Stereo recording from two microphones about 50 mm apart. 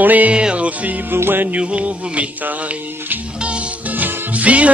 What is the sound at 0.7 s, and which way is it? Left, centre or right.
Music, right.